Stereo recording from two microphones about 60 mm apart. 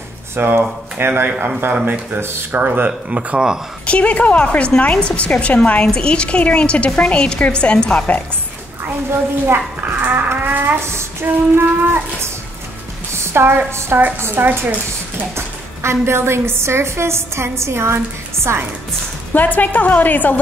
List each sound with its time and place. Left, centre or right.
0.4 s a woman's voice: right
2.6 s speech: right
3.8 s a woman's voice: left
9.9 s speech: right
10.8 s a woman's voice: right
13.1 s music: right
13.7 s a woman's voice: right
14.3 s a woman's voice: right
19.3 s a woman's voice: left